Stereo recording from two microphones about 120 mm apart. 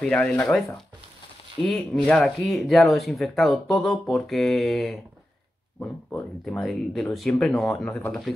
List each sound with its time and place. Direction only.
0.0 s speech: 10° left (ahead or behind)
1.6 s speech: 20° left (ahead or behind)
2.0 s speech: centre (ahead or behind)
6.4 s speech: centre (ahead or behind)